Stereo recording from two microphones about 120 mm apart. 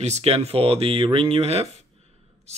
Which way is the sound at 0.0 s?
65° right (ahead or behind).